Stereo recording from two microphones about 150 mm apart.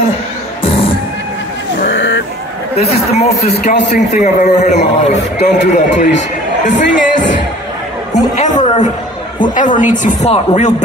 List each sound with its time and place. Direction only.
2.7 s a man's voice: 45° left (ahead or behind)
8.4 s chatter: 55° left (ahead or behind)
9.4 s a woman's voice: 60° left (ahead or behind)